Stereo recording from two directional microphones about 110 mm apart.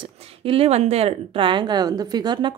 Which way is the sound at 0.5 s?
65° right (ahead or behind).